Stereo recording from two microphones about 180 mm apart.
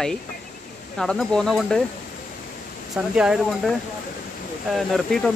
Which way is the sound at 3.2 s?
5° right (ahead or behind).